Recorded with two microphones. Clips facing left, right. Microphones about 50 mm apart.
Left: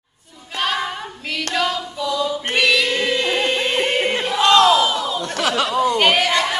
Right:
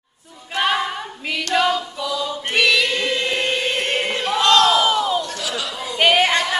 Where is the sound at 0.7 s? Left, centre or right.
Centre.